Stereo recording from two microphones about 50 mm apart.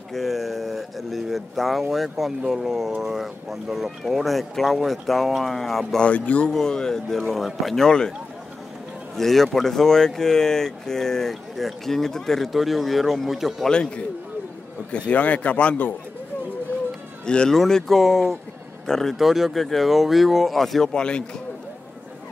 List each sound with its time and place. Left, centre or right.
0.1 s speech: centre
5.9 s speech: left
6.5 s speech: centre
9.1 s speech: centre
13.7 s speech: left
15.1 s speech: left
17.3 s speech: centre
19.1 s speech: centre
20.9 s speech: centre